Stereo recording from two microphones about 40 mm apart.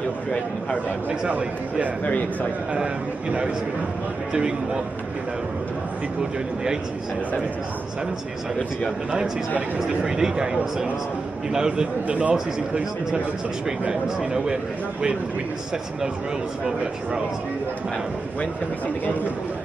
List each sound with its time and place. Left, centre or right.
2.7 s a man's voice: right
9.8 s speech: centre
12.1 s a man's voice: right
14.0 s speech: centre